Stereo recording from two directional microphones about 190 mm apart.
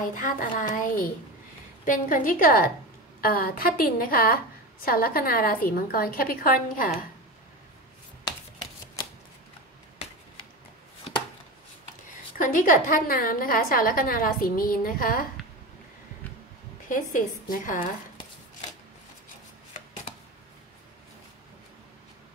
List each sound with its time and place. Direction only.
0.0 s a woman's voice: 45° left (ahead or behind)
12.4 s a woman's voice: 45° left (ahead or behind)
16.9 s a woman's voice: 45° left (ahead or behind)